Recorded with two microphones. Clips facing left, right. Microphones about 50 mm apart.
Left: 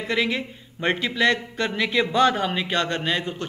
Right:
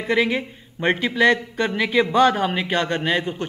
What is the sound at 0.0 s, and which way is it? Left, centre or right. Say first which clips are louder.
A man's voice: right 4 dB; centre.